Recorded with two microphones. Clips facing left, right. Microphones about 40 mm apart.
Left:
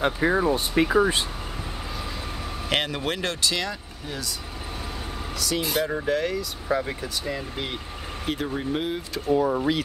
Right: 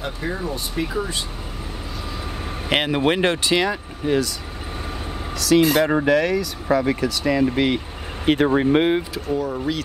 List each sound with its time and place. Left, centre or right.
0.0 s speech: left
2.7 s speech: centre
4.0 s speech: right
5.4 s speech: right
8.3 s speech: right
9.3 s speech: centre